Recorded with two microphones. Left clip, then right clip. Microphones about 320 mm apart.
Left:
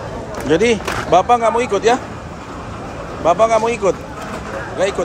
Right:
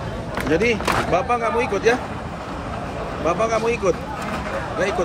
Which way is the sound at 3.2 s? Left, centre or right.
Centre.